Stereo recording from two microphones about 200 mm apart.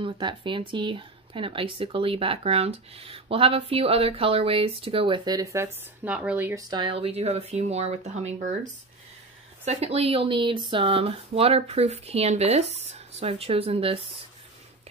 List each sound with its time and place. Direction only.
0.0 s speech: 25° right (ahead or behind); by 6.6 s 10° right (ahead or behind)
6.7 s speech: 25° right (ahead or behind)
9.7 s speech: 30° right (ahead or behind)